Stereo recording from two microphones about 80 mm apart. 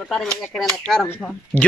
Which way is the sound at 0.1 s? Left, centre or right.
Centre.